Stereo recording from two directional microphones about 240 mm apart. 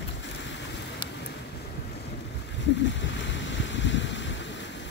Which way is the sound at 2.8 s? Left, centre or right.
Left.